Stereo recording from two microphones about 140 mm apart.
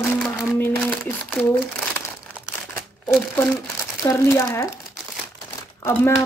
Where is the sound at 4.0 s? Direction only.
20° left (ahead or behind).